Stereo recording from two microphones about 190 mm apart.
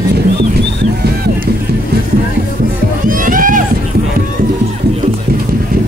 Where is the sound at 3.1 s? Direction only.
45° right (ahead or behind).